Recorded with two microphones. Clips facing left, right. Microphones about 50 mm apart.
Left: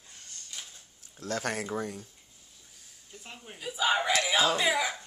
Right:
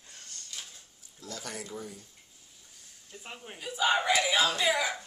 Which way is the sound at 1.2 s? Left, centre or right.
Left.